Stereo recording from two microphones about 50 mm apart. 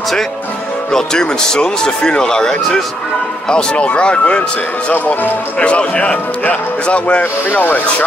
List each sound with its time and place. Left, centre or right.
0.9 s speech: centre
4.9 s speech: left
5.6 s speech: left